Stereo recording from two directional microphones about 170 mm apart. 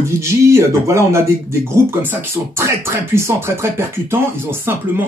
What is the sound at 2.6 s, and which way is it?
Speech, 15° right (ahead or behind).